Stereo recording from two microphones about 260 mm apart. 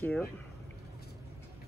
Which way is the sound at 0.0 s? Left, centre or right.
Centre.